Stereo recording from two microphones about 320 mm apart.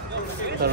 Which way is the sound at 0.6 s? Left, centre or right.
Right.